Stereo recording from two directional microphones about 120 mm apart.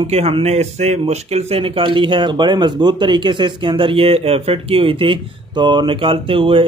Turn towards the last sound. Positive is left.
turn(degrees=-45)  # may be behind; listen again after turning